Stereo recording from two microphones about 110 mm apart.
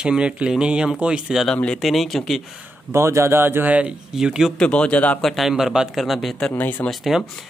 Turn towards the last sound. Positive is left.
turn(degrees=0)  # may be behind; listen again after turning